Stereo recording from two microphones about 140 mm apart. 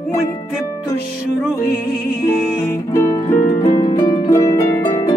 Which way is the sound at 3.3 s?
70° left (ahead or behind).